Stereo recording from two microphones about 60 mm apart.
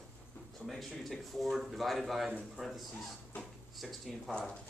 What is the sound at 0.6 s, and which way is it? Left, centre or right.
Speech, centre.